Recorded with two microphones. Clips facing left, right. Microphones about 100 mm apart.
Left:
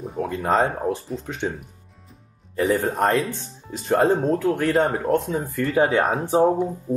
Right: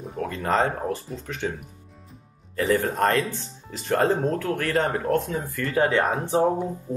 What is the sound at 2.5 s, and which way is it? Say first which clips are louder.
Speech: left 2 dB; 15° left (ahead or behind).